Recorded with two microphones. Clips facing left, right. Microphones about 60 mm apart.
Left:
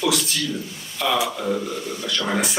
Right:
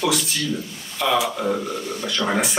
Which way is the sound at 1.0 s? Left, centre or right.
Centre.